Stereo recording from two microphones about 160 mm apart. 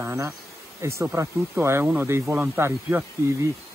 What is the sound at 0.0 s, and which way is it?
Bee, 20° right (ahead or behind).